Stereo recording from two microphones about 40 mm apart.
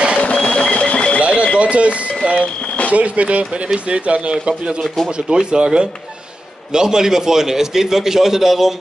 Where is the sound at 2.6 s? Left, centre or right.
Left.